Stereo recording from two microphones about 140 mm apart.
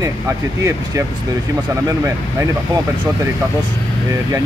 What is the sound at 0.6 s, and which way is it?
Speech, 25° right (ahead or behind).